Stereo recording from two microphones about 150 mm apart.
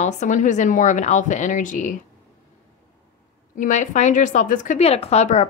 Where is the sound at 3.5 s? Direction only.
55° left (ahead or behind).